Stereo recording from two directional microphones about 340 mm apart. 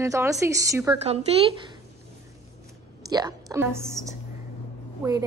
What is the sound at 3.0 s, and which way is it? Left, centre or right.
A woman's voice, centre.